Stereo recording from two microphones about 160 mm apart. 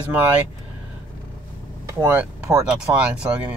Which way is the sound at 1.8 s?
15° right (ahead or behind).